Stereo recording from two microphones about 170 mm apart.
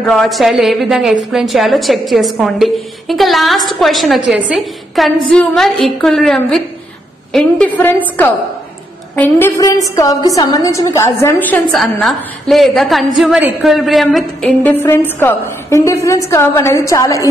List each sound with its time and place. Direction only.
0.0 s a woman's voice: centre (ahead or behind)
9.1 s a woman's voice: 10° left (ahead or behind)